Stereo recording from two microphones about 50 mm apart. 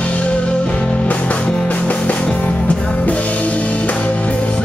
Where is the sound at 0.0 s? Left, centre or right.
Left.